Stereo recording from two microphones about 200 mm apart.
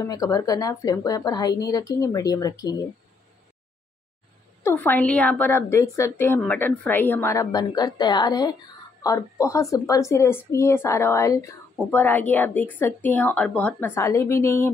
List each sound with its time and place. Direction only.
0.0 s a woman's voice: 15° left (ahead or behind)
4.6 s a woman's voice: 10° left (ahead or behind)